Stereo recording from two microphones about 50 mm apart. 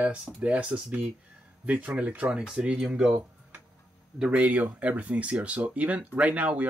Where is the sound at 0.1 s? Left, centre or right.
Right.